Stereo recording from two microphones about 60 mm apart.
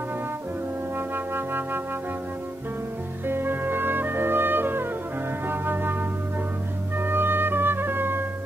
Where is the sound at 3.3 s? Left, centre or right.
Right.